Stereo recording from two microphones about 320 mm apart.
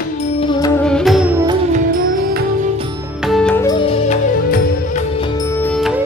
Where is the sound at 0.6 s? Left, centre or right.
Centre.